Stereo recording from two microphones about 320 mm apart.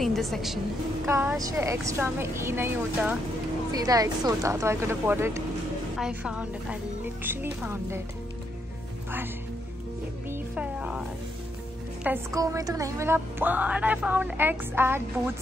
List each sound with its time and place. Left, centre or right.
0.0 s a woman's voice: centre
10.3 s music: centre
12.0 s a woman's voice: centre